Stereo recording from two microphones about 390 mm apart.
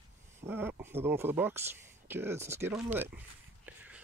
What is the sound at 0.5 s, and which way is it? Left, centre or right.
Speech, centre.